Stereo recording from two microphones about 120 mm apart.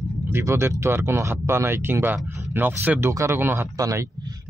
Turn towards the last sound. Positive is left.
turn(degrees=-30)  # may be behind; listen again after turning